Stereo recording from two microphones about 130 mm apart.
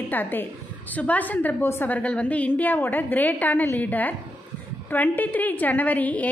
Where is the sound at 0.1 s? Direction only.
15° left (ahead or behind).